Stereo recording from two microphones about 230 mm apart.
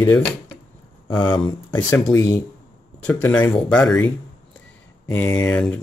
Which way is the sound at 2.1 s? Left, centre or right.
Centre.